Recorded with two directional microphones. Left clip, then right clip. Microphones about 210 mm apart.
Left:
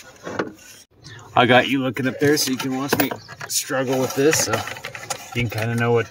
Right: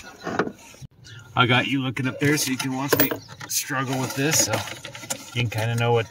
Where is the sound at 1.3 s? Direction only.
40° left (ahead or behind).